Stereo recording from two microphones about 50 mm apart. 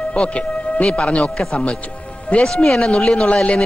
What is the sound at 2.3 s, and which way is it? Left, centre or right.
Speech, left.